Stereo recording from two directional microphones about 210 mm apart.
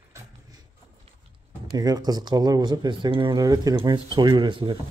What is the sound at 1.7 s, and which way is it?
Speech, 20° right (ahead or behind).